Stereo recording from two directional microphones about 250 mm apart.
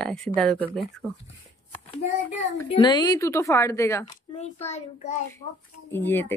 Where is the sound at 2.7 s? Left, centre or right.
Centre.